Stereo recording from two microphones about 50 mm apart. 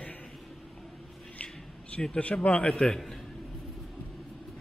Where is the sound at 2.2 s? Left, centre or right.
Left.